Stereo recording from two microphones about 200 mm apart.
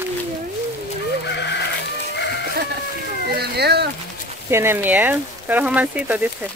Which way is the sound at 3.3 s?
55° right (ahead or behind).